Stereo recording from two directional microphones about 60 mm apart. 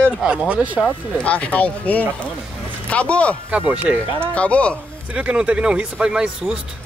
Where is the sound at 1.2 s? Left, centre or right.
Left.